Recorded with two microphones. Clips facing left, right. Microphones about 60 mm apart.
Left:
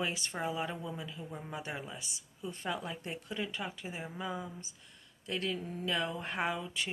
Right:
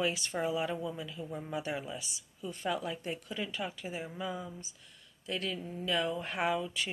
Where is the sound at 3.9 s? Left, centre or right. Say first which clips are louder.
Even; left.